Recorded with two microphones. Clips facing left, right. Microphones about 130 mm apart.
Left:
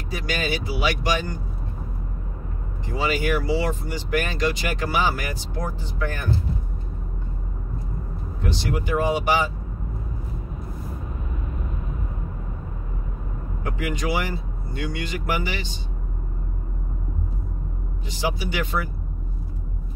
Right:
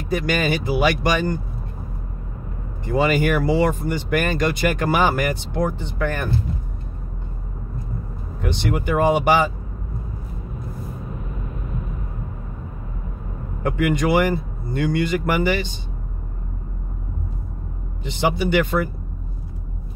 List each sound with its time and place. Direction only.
0.1 s a man's voice: 55° right (ahead or behind)
2.8 s speech: 55° right (ahead or behind)
8.4 s speech: 60° right (ahead or behind)
13.6 s a man's voice: 55° right (ahead or behind)
18.0 s speech: 60° right (ahead or behind)